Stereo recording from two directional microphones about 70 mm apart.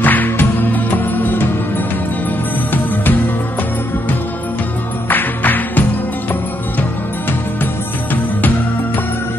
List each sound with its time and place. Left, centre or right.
0.0 s music: left
5.1 s music: left